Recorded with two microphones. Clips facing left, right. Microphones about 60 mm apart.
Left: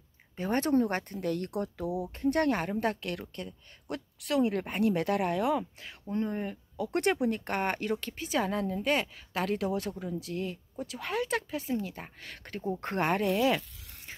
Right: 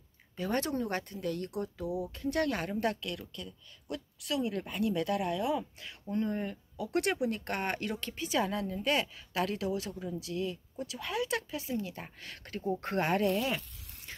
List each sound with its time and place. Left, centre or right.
0.4 s speech: left
2.1 s speech: left
4.2 s speech: left
5.6 s speech: left
6.8 s speech: left
7.4 s speech: left
9.6 s speech: left
13.2 s speech: left